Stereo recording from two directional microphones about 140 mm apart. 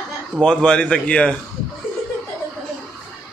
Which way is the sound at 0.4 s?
5° left (ahead or behind).